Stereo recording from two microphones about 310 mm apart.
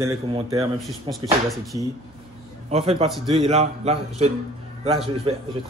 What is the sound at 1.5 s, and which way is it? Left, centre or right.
Speech, centre.